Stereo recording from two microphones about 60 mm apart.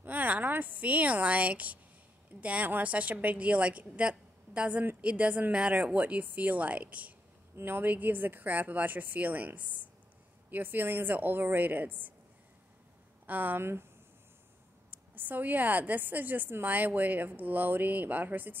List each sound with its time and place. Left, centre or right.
0.0 s a sound: right
2.4 s a woman's voice: right
7.5 s a woman's voice: right
13.3 s a woman's voice: right
14.9 s a woman's voice: right